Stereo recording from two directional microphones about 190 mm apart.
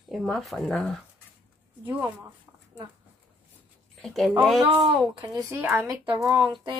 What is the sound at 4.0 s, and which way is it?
Speech, centre (ahead or behind).